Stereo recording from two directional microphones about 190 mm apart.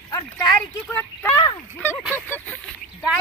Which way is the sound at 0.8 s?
10° left (ahead or behind).